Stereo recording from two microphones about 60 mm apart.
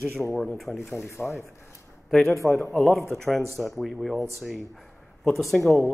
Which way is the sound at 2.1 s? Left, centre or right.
Centre.